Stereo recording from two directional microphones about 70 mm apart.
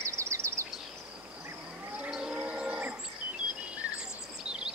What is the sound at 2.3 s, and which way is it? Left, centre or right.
Livestock, centre.